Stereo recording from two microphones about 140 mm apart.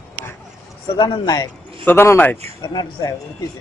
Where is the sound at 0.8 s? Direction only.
35° left (ahead or behind).